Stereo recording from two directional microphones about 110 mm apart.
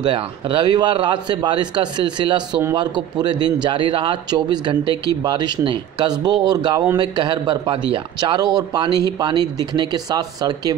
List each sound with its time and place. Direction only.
0.0 s a man's voice: 45° right (ahead or behind)